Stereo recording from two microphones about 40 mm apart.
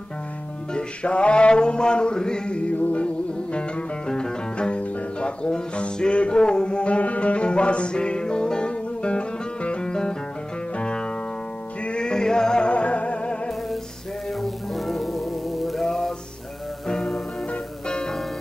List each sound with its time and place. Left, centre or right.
0.7 s music: left
2.7 s music: left
4.1 s music: left
14.4 s music: centre
16.8 s music: centre